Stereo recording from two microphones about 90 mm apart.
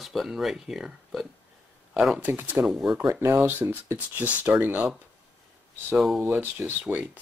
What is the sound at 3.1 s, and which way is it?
Speech, 30° right (ahead or behind).